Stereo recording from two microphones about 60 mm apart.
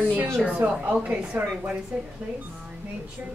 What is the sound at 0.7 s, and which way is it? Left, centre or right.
A woman's voice, centre.